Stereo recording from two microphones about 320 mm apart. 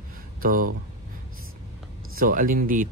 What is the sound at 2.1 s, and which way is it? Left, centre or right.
Speech, right.